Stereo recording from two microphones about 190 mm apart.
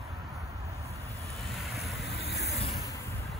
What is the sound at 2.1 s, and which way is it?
Vehicle, 60° left (ahead or behind).